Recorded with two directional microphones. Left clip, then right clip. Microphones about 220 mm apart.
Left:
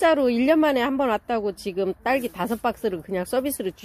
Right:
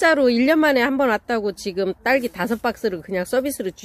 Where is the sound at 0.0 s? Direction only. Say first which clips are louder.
Right 3 dB; 15° right (ahead or behind).